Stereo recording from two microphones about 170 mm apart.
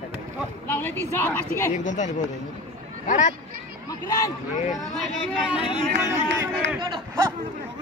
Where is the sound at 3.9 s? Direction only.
20° left (ahead or behind).